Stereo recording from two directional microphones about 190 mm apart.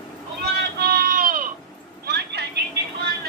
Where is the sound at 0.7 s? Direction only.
55° right (ahead or behind).